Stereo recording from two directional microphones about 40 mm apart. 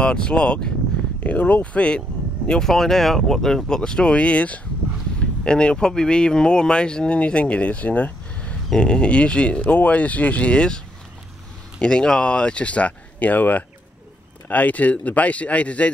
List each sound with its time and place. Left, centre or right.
0.0 s speech: left
1.2 s speech: left
2.6 s speech: centre; by 8.5 s left
8.7 s speech: left
11.8 s speech: left